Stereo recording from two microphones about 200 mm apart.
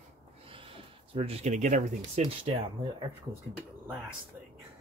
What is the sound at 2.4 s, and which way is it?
Speech, 30° right (ahead or behind).